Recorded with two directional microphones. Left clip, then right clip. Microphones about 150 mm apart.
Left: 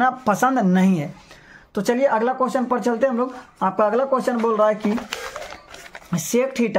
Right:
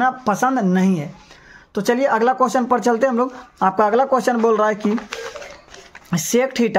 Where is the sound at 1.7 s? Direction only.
15° right (ahead or behind).